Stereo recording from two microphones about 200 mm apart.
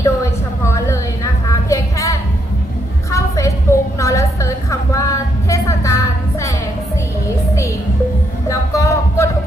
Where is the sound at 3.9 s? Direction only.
15° left (ahead or behind).